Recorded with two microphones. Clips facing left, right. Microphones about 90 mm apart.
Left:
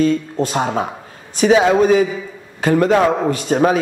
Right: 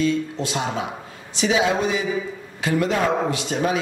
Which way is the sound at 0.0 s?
45° left (ahead or behind).